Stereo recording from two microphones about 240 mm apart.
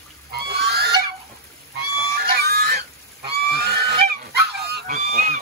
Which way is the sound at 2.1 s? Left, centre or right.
Right.